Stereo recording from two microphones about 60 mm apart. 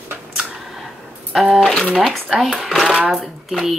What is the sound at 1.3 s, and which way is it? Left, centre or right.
Speech, centre.